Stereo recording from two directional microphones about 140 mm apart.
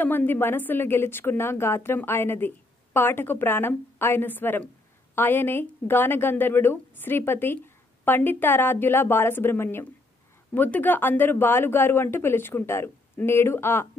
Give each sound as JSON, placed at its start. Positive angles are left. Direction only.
{"t": 0.0, "sound": "a woman's voice", "side_deg": 15}